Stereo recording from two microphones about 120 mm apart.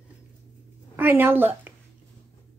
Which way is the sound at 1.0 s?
15° right (ahead or behind).